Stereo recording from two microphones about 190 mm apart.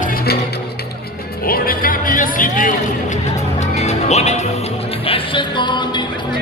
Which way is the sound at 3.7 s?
35° left (ahead or behind).